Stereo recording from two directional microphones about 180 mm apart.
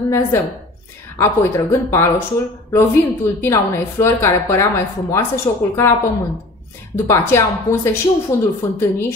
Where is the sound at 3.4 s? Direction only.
15° left (ahead or behind).